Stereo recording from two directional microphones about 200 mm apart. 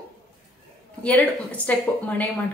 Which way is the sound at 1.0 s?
5° left (ahead or behind).